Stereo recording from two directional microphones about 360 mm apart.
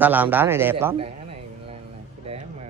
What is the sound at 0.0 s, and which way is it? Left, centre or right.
A man's voice, centre.